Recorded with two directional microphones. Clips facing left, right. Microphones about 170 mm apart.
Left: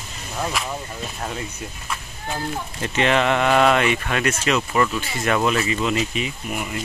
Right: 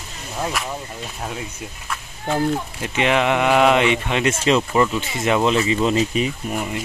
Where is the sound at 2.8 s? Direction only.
10° right (ahead or behind); by 6.7 s 35° right (ahead or behind).